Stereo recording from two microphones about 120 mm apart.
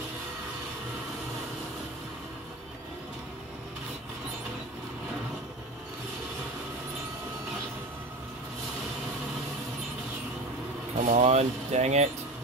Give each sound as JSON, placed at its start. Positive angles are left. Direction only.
{"t": 11.0, "sound": "speech", "side_deg": -85}